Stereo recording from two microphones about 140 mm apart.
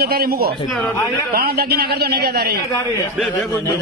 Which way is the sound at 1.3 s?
90° right.